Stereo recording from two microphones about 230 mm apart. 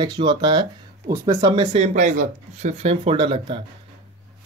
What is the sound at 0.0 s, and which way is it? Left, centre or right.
Speech, centre.